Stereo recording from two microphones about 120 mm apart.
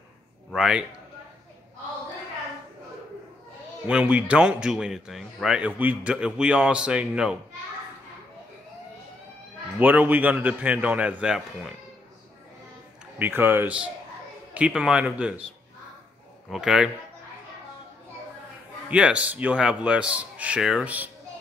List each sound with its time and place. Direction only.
0.5 s speech: 5° right (ahead or behind)
3.8 s a man's voice: 10° right (ahead or behind)
9.8 s a man's voice: 15° right (ahead or behind)
13.0 s a man's voice: 15° right (ahead or behind)
16.4 s speech: 5° right (ahead or behind)
18.9 s a man's voice: 10° right (ahead or behind)